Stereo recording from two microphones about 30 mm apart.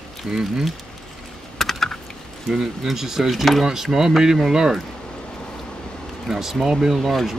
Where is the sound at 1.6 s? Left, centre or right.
Centre.